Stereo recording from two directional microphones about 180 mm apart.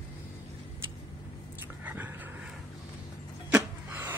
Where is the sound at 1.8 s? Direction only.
10° right (ahead or behind).